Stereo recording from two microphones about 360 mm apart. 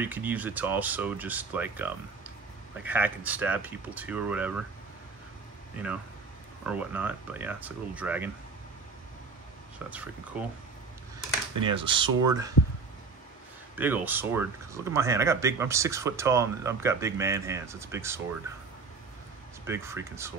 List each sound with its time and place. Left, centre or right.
0.0 s speech: centre
6.6 s speech: centre
9.8 s speech: centre
11.5 s speech: centre
13.7 s speech: centre
19.6 s speech: centre